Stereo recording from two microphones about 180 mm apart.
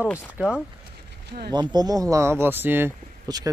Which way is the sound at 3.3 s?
20° right (ahead or behind).